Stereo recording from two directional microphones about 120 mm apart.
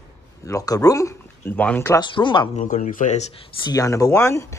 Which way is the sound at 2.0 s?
40° left (ahead or behind).